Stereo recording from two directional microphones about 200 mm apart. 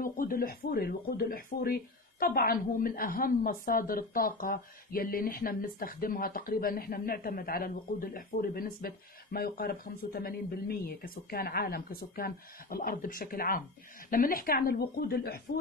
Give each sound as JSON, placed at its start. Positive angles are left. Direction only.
{"t": 0.0, "sound": "speech", "side_deg": 45}